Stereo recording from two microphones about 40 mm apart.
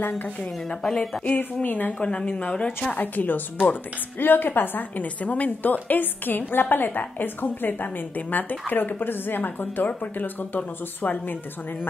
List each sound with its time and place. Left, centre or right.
0.7 s speech: centre
1.2 s a woman's voice: left
1.9 s speech: left
3.0 s a woman's voice: left
5.0 s a woman's voice: left